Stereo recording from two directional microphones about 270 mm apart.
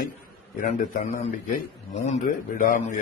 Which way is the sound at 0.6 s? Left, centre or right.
Left.